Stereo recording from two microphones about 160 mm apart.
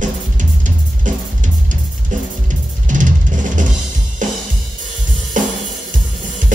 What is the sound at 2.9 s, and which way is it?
Music, 55° right (ahead or behind).